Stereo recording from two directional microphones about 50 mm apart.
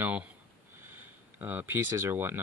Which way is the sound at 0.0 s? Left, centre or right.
Right.